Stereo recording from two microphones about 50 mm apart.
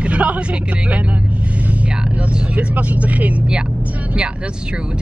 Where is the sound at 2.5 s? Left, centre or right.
Right.